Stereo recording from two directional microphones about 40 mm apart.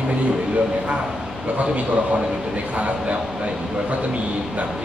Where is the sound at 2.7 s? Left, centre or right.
Right.